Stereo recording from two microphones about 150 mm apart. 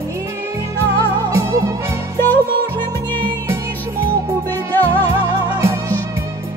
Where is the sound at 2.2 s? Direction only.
15° left (ahead or behind).